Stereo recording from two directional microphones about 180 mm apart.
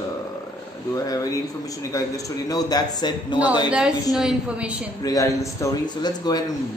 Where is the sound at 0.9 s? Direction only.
20° left (ahead or behind).